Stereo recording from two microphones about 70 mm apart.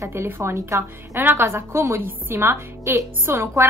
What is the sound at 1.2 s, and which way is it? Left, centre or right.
A woman's voice, right.